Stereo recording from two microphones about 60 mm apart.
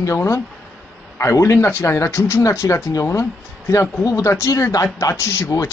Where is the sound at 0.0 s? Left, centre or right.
Left.